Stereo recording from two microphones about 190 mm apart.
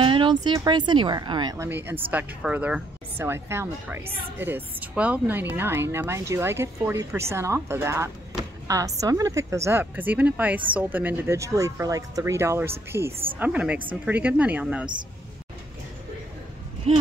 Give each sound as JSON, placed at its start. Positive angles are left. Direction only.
{"t": 0.0, "sound": "speech", "side_deg": -25}